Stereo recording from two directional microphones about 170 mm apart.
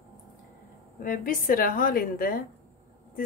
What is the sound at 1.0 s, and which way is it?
A woman's voice, 55° left (ahead or behind).